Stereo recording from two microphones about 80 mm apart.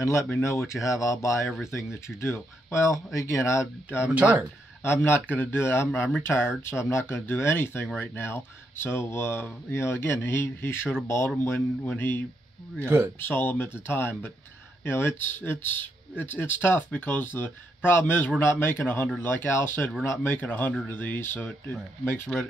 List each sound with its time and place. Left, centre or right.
0.0 s speech: left
4.1 s speech: centre
4.8 s speech: left
13.2 s speech: left